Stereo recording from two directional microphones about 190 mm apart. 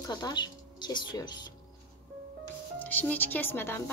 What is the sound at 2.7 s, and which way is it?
A woman's voice, 10° left (ahead or behind).